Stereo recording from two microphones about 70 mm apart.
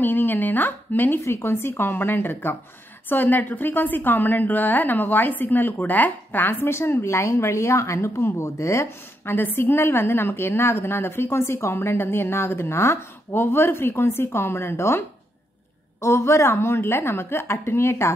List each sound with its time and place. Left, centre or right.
0.0 s a woman's voice: left
1.2 s a woman's voice: left
9.3 s a woman's voice: left